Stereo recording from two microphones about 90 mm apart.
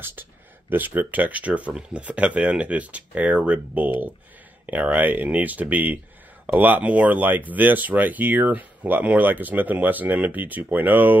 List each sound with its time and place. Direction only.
0.0 s speech: 20° right (ahead or behind)